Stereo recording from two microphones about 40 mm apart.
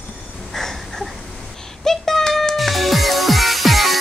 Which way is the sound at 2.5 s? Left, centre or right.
Centre.